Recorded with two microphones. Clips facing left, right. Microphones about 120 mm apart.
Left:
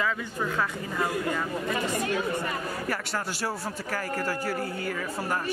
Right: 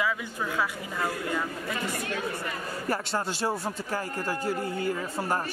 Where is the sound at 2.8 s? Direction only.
25° right (ahead or behind).